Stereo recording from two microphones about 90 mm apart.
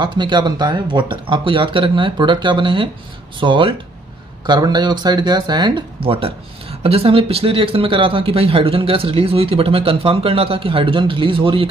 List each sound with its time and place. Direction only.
0.0 s speech: 55° right (ahead or behind)
4.5 s speech: 50° right (ahead or behind)
5.9 s speech: 90° right